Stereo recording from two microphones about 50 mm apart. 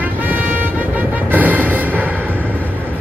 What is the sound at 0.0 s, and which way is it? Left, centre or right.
Vehicle, right.